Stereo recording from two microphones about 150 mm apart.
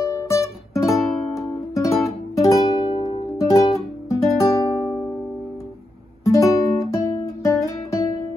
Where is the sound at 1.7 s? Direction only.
20° left (ahead or behind).